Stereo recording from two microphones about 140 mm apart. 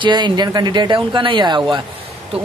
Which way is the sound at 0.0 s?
30° right (ahead or behind).